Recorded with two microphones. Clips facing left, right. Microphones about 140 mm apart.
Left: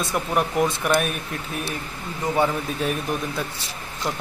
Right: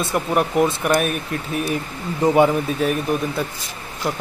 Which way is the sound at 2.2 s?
35° right (ahead or behind).